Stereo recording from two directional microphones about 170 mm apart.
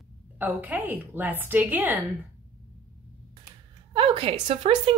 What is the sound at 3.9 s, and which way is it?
A woman's voice, 30° right (ahead or behind).